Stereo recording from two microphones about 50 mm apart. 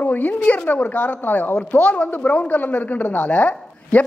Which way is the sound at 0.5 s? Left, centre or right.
Left.